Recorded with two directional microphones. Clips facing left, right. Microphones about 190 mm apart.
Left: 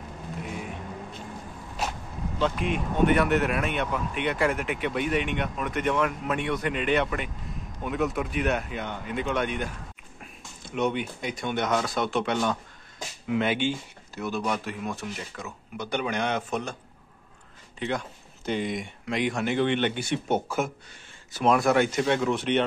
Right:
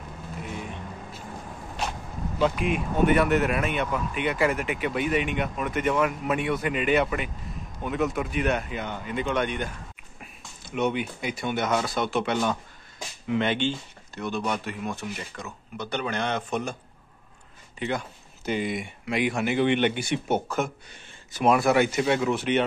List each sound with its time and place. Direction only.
1.8 s vehicle: 5° left (ahead or behind)
2.3 s speech: 10° right (ahead or behind); by 16.5 s 10° left (ahead or behind)
17.7 s speech: 5° right (ahead or behind)
20.3 s speech: 5° left (ahead or behind)
21.3 s speech: 15° right (ahead or behind)
21.5 s speech: 5° right (ahead or behind)